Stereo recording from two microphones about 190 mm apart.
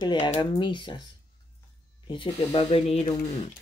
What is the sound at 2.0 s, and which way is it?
Speech, 25° left (ahead or behind).